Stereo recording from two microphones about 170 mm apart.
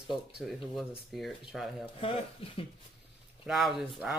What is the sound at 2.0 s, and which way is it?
Speech, 35° left (ahead or behind).